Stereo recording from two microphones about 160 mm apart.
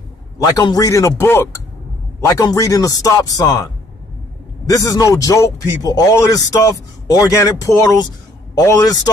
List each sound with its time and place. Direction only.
0.4 s a man's voice: 25° left (ahead or behind)
4.6 s a man's voice: 20° left (ahead or behind)